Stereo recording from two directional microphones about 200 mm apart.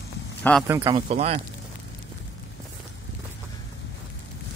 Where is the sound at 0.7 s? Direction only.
15° right (ahead or behind).